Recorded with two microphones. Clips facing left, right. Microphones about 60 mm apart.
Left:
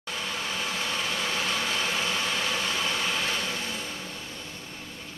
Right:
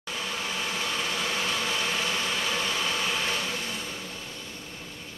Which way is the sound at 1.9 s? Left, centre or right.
Centre.